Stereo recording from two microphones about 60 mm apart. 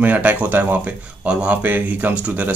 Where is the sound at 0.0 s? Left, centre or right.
Right.